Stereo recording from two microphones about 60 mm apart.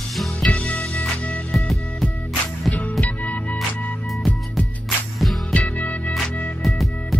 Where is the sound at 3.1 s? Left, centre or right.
Left.